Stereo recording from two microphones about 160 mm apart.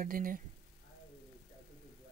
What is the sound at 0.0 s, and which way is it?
Speech, 60° right (ahead or behind).